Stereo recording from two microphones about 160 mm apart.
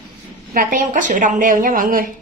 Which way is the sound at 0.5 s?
55° right (ahead or behind).